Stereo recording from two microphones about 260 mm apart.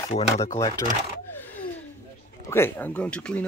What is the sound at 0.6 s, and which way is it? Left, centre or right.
Speech, centre.